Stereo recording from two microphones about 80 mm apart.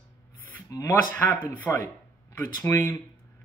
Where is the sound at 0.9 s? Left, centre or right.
Left.